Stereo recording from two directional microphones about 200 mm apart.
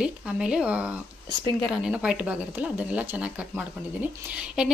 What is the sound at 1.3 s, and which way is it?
Speech, 20° left (ahead or behind).